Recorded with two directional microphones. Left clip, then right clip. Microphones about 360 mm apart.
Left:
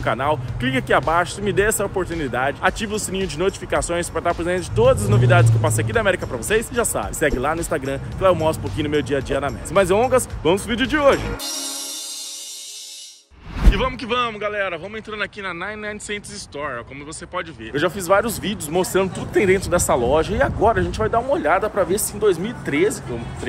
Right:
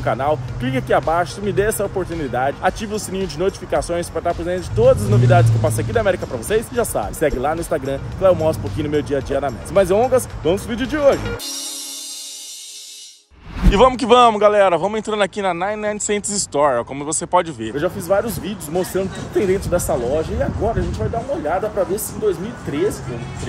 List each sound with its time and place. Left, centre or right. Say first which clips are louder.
0.0 s speech: right 2 dB; centre
13.7 s speech: right 12 dB; centre
14.3 s a man's voice: right 11 dB; right
15.1 s speech: right 5 dB; centre
16.3 s a man's voice: right 12 dB; right
17.3 s speech: right 11 dB; centre
18.0 s speech: left 1 dB; centre